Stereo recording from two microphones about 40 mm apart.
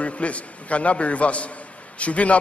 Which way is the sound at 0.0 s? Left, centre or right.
Left.